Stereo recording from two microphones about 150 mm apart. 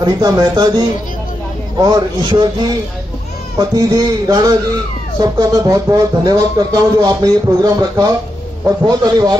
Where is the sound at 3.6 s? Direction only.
25° right (ahead or behind).